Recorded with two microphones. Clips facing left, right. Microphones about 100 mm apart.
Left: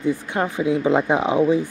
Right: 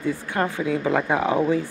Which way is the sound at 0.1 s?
15° left (ahead or behind).